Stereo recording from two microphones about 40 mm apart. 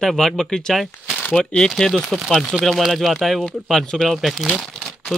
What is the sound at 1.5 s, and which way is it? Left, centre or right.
Speech, centre.